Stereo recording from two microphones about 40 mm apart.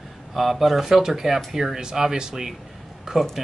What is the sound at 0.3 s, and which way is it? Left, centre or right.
Speech, centre.